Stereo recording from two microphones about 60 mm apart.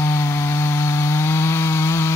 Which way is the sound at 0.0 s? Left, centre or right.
Left.